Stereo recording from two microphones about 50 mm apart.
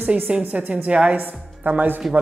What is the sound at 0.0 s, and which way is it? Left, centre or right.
A woman's voice, right.